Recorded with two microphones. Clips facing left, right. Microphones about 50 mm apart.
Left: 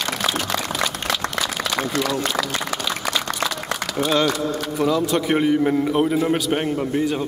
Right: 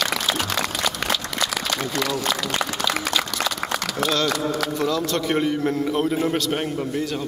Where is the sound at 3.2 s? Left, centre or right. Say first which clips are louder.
Even; right.